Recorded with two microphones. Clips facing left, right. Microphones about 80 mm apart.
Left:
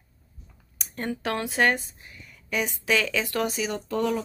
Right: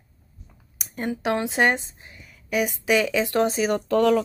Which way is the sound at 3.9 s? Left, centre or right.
Right.